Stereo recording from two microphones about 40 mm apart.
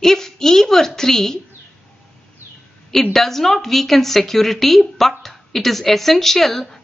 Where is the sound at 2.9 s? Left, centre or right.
Centre.